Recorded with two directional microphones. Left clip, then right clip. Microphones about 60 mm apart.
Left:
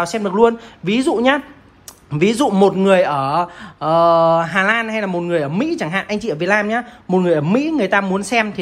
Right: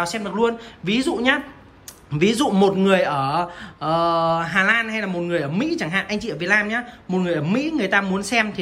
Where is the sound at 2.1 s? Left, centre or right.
Right.